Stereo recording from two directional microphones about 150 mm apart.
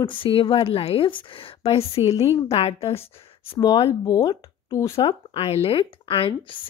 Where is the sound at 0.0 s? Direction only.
35° left (ahead or behind).